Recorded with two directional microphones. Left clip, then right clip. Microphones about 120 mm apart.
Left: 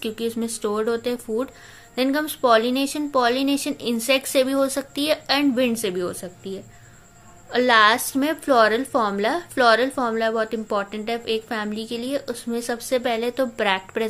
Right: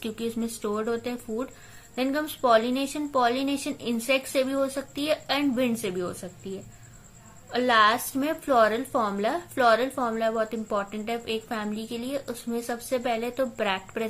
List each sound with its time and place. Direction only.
0.0 s a woman's voice: 30° left (ahead or behind)